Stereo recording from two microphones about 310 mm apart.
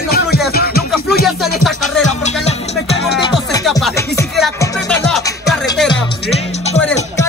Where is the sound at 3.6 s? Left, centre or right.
Centre.